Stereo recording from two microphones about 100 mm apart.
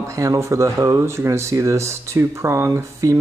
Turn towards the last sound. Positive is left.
turn(degrees=-30)  # may be behind; listen again after turning